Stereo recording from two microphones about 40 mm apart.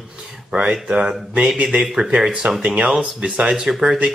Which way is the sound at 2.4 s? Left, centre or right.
Right.